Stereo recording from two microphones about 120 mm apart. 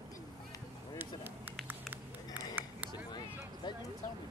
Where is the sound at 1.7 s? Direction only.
15° right (ahead or behind).